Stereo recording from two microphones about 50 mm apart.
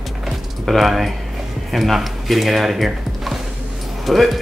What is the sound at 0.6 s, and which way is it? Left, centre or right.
Speech, centre.